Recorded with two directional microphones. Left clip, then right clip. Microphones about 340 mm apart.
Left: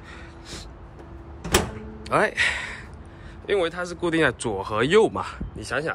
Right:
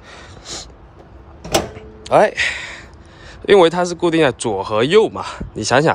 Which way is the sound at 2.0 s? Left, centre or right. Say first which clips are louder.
Right 8 dB; centre.